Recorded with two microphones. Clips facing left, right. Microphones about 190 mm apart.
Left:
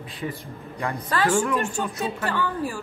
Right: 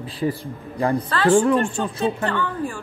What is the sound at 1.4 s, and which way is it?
Speech, 30° right (ahead or behind).